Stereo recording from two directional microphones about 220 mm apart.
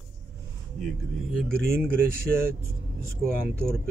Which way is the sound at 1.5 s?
10° right (ahead or behind).